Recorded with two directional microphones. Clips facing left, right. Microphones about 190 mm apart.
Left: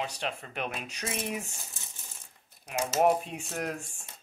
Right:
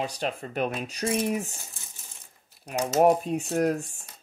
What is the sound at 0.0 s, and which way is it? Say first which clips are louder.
Speech: right 5 dB; 40° right (ahead or behind).